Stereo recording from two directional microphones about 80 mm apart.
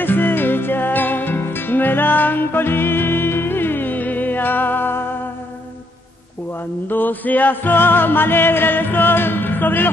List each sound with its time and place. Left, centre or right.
0.0 s music: left
6.9 s music: left